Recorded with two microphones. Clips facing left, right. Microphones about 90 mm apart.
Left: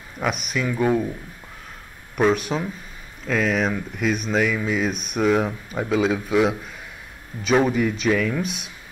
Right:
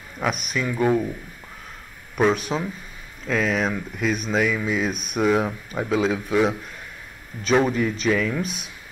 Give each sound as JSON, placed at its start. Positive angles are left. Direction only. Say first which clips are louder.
{"t": 0.2, "sound": "speech", "louder": "left 1 dB", "side_deg": 0}
{"t": 2.1, "sound": "speech", "louder": "left 1 dB", "side_deg": 0}